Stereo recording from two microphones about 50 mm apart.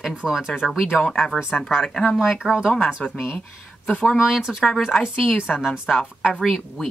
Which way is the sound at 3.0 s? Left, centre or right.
Centre.